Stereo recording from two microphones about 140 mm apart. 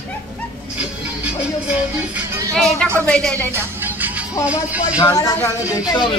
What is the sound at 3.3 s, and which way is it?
Music, 15° right (ahead or behind).